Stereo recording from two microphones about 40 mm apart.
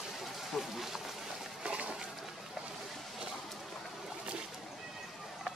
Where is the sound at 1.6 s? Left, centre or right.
Right.